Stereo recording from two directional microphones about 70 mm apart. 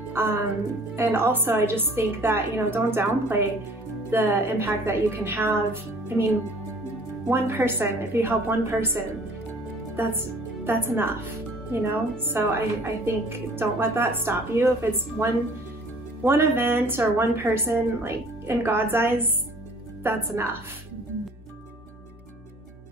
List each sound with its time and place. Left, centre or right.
0.1 s a woman's voice: right
7.2 s a woman's voice: right